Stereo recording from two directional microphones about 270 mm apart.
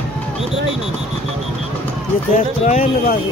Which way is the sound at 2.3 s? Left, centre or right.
Left.